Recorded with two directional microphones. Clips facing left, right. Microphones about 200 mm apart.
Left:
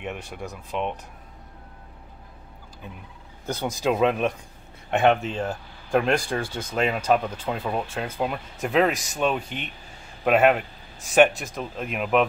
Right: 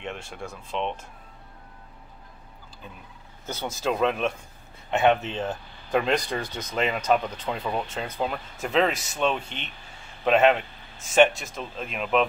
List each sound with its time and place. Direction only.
0.0 s speech: 5° left (ahead or behind)
3.4 s speech: 15° left (ahead or behind)